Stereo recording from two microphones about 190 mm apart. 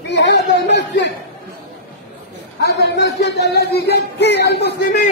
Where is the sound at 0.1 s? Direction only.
65° left (ahead or behind).